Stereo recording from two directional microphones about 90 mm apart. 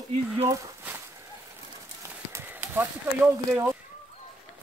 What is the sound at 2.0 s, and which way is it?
Clip-clop, 35° right (ahead or behind).